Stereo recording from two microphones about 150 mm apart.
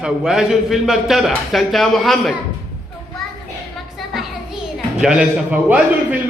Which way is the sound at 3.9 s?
Centre (ahead or behind).